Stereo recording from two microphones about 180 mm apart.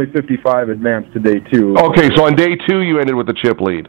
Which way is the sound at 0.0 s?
15° right (ahead or behind).